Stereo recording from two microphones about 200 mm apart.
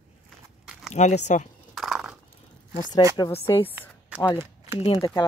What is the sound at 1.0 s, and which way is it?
Speech, 35° left (ahead or behind).